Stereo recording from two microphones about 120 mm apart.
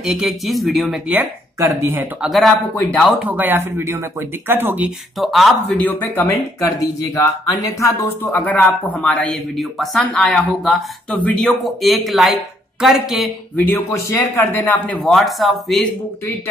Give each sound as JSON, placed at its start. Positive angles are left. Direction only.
{"t": 0.0, "sound": "speech", "side_deg": -5}
{"t": 1.6, "sound": "speech", "side_deg": -25}
{"t": 2.2, "sound": "speech", "side_deg": 0}
{"t": 2.7, "sound": "speech", "side_deg": 10}
{"t": 3.2, "sound": "speech", "side_deg": -15}
{"t": 5.2, "sound": "speech", "side_deg": 0}
{"t": 5.8, "sound": "speech", "side_deg": 15}
{"t": 13.6, "sound": "speech", "side_deg": 20}
{"t": 15.0, "sound": "speech", "side_deg": 0}